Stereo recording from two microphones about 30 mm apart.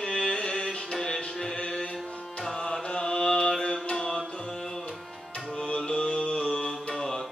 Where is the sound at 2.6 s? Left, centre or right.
Centre.